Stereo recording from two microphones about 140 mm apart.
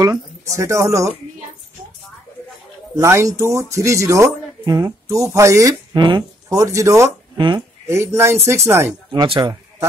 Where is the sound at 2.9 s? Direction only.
20° right (ahead or behind).